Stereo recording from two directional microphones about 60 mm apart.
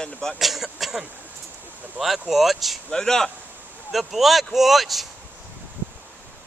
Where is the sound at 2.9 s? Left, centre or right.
Centre.